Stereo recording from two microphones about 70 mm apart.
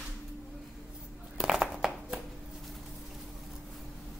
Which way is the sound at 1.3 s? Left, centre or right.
Centre.